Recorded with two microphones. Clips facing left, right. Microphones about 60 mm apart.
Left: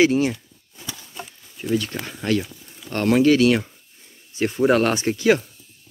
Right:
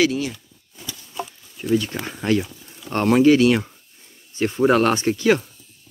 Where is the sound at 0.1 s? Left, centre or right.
Left.